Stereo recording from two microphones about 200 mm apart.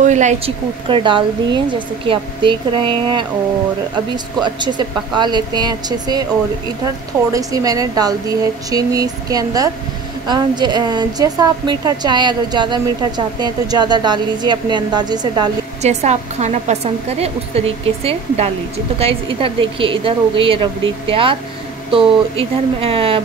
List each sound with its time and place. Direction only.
0.0 s speech: 35° right (ahead or behind)
0.8 s a woman's voice: 25° right (ahead or behind)
4.4 s a woman's voice: 20° right (ahead or behind)
7.3 s a woman's voice: 15° right (ahead or behind)
15.8 s a woman's voice: 35° right (ahead or behind)